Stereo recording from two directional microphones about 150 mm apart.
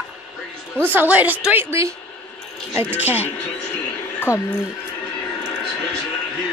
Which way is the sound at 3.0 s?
45° left (ahead or behind).